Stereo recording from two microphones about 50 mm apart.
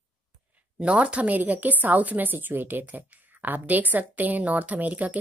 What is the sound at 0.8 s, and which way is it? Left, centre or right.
A woman's voice, right.